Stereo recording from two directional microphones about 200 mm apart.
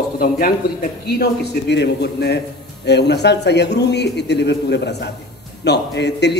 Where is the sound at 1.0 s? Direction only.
55° left (ahead or behind).